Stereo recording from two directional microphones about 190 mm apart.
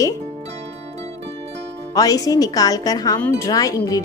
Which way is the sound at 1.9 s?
20° left (ahead or behind).